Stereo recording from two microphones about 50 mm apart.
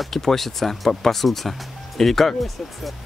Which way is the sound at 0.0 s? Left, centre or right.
Centre.